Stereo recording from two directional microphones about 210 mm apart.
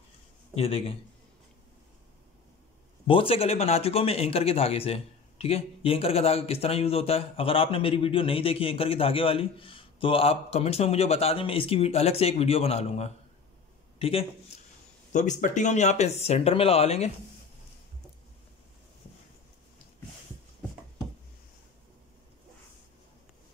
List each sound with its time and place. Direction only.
0.6 s speech: 25° left (ahead or behind)
3.1 s a man's voice: 25° left (ahead or behind)